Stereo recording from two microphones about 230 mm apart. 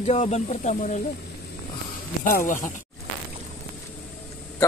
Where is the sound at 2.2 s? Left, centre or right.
Left.